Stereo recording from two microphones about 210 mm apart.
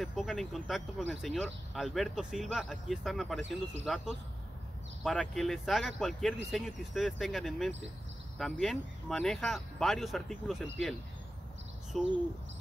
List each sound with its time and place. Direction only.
0.0 s speech: centre (ahead or behind)
11.9 s speech: centre (ahead or behind)